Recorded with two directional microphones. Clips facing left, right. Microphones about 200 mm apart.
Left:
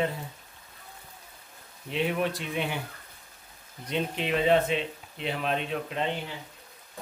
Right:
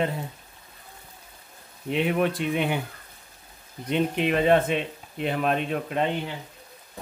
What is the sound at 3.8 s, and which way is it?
Speech, 55° right (ahead or behind).